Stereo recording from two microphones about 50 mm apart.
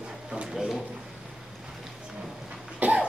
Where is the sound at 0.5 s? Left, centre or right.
Centre.